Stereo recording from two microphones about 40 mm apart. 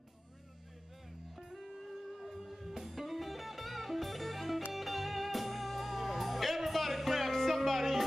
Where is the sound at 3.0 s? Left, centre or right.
Centre.